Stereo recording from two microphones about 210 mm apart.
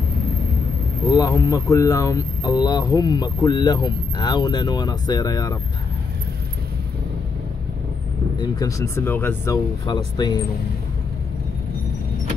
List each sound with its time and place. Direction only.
1.1 s speech: 15° left (ahead or behind)
8.4 s speech: 15° left (ahead or behind)